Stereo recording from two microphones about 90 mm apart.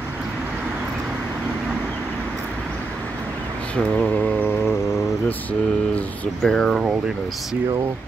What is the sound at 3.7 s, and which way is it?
Mantra, 10° left (ahead or behind).